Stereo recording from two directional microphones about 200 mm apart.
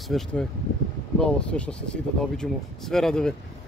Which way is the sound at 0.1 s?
5° left (ahead or behind).